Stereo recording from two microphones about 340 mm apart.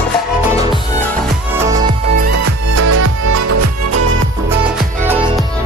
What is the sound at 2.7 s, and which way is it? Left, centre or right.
Music, right.